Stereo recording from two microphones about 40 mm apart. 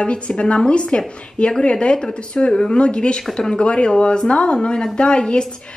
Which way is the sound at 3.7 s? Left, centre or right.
Left.